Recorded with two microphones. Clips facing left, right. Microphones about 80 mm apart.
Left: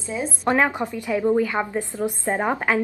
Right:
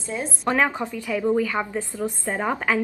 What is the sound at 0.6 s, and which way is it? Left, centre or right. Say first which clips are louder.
Speech: left 1 dB; centre.